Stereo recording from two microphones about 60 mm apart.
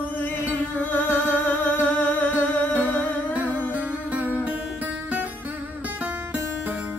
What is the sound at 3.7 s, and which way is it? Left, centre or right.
Music, right.